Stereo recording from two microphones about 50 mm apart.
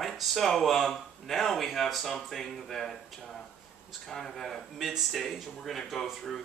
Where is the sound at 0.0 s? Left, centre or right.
Centre.